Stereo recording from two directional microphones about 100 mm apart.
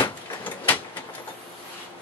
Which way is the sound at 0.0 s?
15° left (ahead or behind).